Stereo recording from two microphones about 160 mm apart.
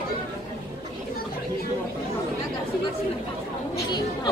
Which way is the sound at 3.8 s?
25° left (ahead or behind).